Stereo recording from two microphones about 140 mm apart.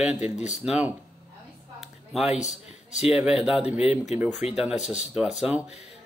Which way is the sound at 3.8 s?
50° left (ahead or behind).